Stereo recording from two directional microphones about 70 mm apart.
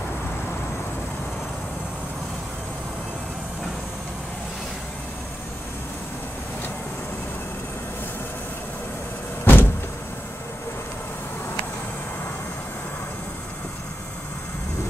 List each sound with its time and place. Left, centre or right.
9.4 s vehicle: left